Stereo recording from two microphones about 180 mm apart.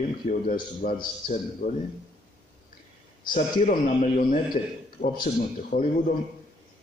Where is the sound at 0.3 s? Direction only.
45° left (ahead or behind).